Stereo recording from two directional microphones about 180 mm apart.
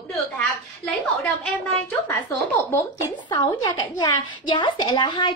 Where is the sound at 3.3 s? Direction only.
25° left (ahead or behind).